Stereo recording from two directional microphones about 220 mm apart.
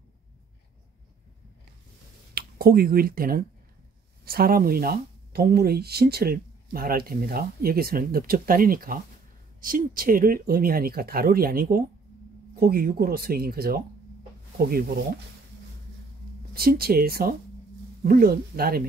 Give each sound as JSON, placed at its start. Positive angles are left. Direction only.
{"t": 2.3, "sound": "speech", "side_deg": -45}
{"t": 16.5, "sound": "speech", "side_deg": -45}